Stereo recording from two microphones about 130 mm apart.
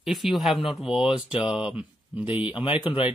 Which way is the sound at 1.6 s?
45° left (ahead or behind).